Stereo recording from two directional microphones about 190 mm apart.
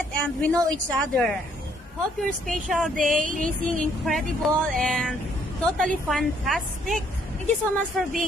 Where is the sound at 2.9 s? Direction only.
45° right (ahead or behind).